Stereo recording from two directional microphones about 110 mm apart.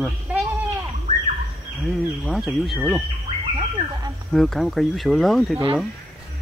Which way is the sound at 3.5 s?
40° right (ahead or behind).